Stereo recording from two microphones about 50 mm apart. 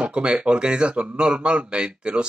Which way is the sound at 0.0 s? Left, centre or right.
Right.